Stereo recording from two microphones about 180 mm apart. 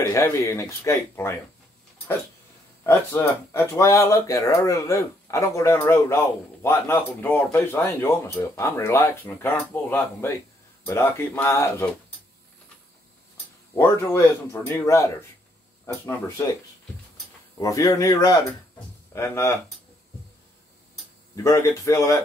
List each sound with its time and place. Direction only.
0.0 s speech: 15° left (ahead or behind)
2.8 s speech: 15° left (ahead or behind)
13.7 s speech: 15° left (ahead or behind)
17.6 s speech: 20° left (ahead or behind)
21.4 s speech: 15° left (ahead or behind)